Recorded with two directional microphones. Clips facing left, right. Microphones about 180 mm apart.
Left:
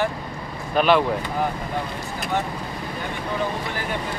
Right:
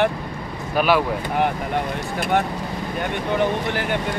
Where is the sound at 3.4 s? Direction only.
70° right (ahead or behind).